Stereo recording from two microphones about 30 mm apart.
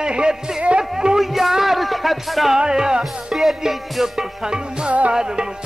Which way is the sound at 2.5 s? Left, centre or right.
Right.